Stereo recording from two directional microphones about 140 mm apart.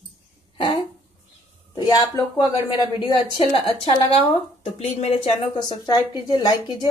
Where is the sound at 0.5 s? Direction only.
35° left (ahead or behind).